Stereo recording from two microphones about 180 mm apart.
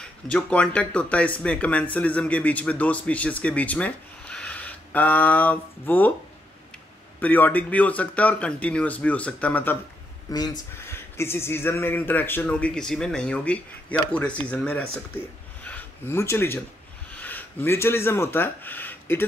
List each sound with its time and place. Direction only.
0.0 s speech: 5° left (ahead or behind)
7.2 s speech: 10° left (ahead or behind)
10.3 s speech: 20° left (ahead or behind)